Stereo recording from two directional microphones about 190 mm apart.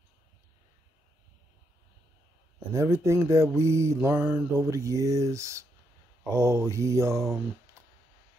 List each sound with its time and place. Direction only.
2.7 s mantra: 15° right (ahead or behind)